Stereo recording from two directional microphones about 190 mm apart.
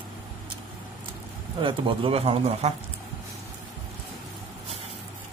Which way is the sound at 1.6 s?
25° right (ahead or behind).